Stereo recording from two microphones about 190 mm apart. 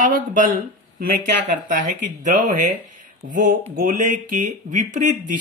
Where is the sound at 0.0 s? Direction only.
45° right (ahead or behind).